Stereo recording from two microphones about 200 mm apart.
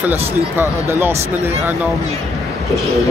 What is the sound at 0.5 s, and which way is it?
Speech, 10° right (ahead or behind).